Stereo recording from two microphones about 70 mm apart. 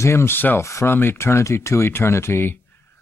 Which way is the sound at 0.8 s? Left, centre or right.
Left.